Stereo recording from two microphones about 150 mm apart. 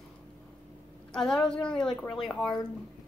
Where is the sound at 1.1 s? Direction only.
5° left (ahead or behind).